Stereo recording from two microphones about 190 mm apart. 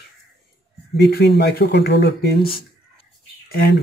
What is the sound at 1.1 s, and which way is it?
Speech, 60° left (ahead or behind).